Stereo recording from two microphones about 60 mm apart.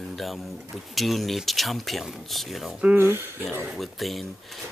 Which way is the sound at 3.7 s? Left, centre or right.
Centre.